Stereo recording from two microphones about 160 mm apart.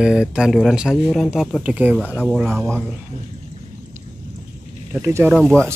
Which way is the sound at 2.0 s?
10° left (ahead or behind).